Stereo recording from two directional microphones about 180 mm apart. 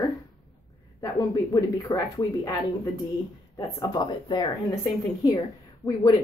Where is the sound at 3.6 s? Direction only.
25° left (ahead or behind).